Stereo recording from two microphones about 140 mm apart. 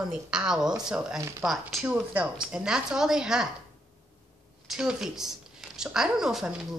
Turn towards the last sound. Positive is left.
turn(degrees=-5)  # may be behind; listen again after turning